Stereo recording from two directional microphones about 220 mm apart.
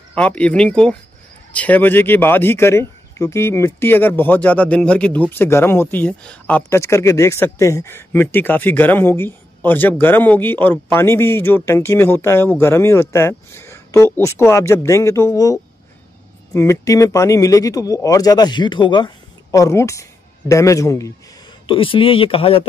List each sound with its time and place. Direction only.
0.1 s speech: 5° left (ahead or behind); by 22.7 s 25° left (ahead or behind)